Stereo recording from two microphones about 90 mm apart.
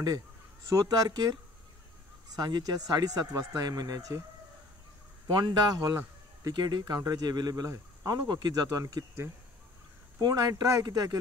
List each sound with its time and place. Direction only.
0.7 s speech: 50° right (ahead or behind)
5.4 s speech: 50° right (ahead or behind)
10.2 s speech: 45° right (ahead or behind)